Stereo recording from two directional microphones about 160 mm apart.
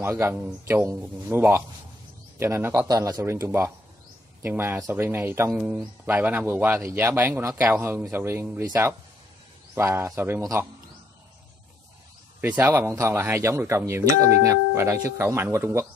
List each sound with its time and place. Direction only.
0.0 s speech: 15° right (ahead or behind)
5.5 s speech: centre (ahead or behind)
12.4 s speech: 10° right (ahead or behind)